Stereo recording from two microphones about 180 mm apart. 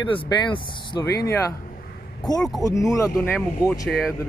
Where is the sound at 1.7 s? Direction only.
55° left (ahead or behind).